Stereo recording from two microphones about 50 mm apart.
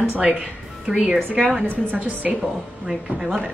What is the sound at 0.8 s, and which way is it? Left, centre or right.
Speech, centre.